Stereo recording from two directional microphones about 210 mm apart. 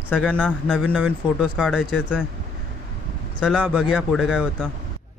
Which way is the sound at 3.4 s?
5° right (ahead or behind).